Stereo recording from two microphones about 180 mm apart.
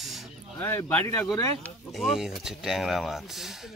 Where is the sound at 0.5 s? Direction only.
10° left (ahead or behind).